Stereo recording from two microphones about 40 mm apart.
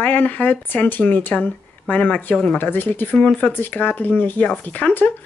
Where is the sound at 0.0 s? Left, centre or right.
Left.